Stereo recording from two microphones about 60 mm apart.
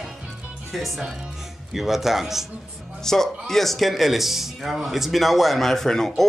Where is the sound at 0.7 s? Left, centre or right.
Centre.